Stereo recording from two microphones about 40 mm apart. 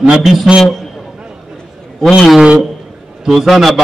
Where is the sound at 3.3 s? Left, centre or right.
Centre.